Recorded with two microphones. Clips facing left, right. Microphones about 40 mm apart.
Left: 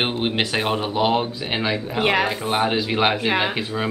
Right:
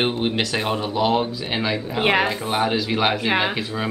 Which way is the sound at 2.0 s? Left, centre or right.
Centre.